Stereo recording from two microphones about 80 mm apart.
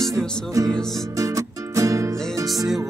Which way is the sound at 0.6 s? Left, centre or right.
Right.